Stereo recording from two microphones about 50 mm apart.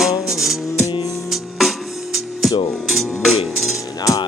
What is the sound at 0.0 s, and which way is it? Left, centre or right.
Music, centre.